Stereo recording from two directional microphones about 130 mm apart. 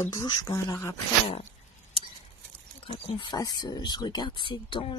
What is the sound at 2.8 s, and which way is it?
Speech, 45° left (ahead or behind).